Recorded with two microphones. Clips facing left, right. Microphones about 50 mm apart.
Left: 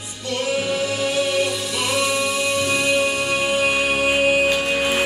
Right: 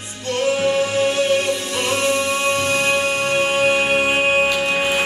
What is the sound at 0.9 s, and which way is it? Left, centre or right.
Music, right.